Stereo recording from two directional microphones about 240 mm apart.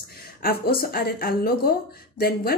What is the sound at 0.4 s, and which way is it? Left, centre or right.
Speech, left.